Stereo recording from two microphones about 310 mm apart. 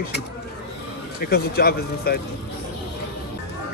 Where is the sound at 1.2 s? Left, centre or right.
Left.